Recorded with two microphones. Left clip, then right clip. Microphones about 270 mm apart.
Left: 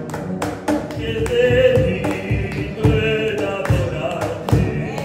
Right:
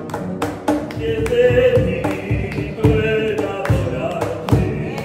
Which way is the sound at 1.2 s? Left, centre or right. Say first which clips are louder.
Right 1 dB; centre.